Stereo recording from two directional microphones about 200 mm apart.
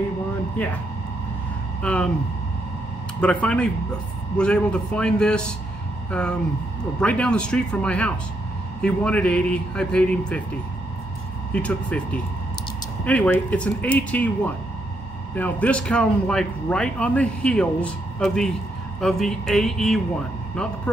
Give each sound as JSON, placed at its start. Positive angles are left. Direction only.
{"t": 1.8, "sound": "speech", "side_deg": 5}
{"t": 3.2, "sound": "speech", "side_deg": 5}
{"t": 11.5, "sound": "speech", "side_deg": 5}